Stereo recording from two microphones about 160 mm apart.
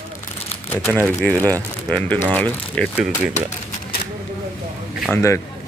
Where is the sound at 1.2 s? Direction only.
10° left (ahead or behind).